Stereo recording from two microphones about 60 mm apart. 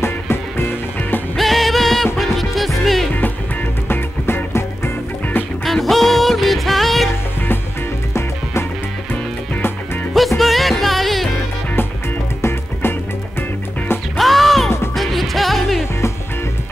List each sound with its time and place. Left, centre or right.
0.0 s music: left
1.3 s music: centre
3.9 s music: left
5.7 s music: centre
10.1 s music: centre
12.4 s music: left
14.1 s music: centre